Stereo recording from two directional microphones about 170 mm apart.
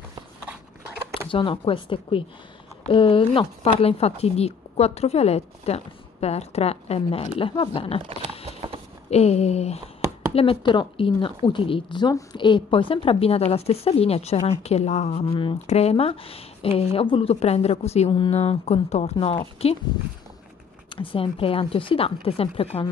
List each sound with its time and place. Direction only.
1.3 s a woman's voice: 30° left (ahead or behind)
8.5 s clip-clop: 35° right (ahead or behind)
9.1 s a woman's voice: 40° left (ahead or behind)
20.9 s a woman's voice: 30° left (ahead or behind)